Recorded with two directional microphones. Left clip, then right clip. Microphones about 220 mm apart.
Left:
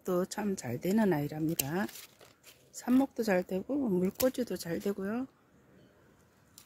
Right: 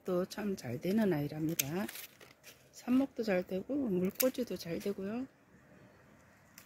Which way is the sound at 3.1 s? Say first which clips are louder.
Left 3 dB; 25° left (ahead or behind).